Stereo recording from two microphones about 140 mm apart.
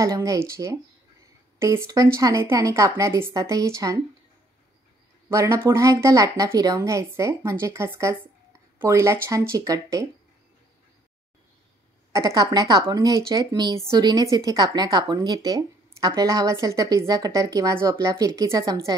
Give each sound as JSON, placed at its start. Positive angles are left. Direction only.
{"t": 0.0, "sound": "a woman's voice", "side_deg": -25}
{"t": 5.3, "sound": "a woman's voice", "side_deg": -20}
{"t": 12.1, "sound": "a woman's voice", "side_deg": -25}